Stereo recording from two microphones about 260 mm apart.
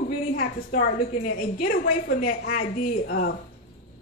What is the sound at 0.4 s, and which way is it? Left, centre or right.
A woman's voice, left.